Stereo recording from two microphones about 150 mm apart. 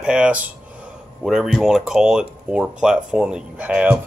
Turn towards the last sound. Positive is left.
turn(degrees=-10)  # may be behind; listen again after turning